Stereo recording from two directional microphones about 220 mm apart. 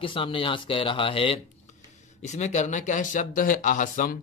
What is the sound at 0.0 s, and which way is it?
A man's voice, 25° left (ahead or behind).